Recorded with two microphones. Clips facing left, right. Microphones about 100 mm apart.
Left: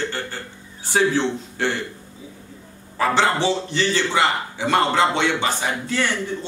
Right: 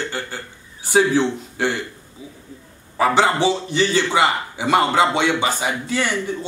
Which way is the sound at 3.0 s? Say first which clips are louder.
Right 2 dB; 15° right (ahead or behind).